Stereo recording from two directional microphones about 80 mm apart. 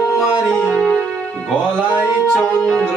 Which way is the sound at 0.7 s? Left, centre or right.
Centre.